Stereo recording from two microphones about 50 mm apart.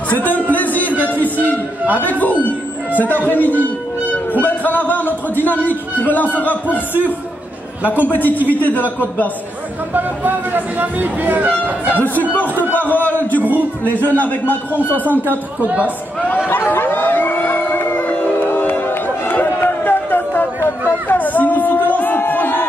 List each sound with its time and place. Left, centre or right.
0.1 s a sound: left
1.0 s music: left
2.0 s a man's voice: left
2.9 s music: left
3.3 s a man's voice: left
7.8 s speech: right
8.1 s a man's voice: left
9.9 s speech: right
12.8 s a man's voice: left
13.4 s speech: right
13.8 s a man's voice: left
15.6 s speech: right
16.4 s a sound: left
18.1 s music: left